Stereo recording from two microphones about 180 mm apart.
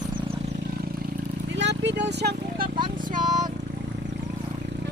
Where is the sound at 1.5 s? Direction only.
80° right.